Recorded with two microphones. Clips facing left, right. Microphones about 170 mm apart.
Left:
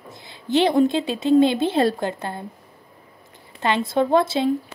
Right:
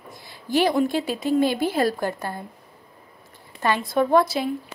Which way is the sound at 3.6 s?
25° left (ahead or behind).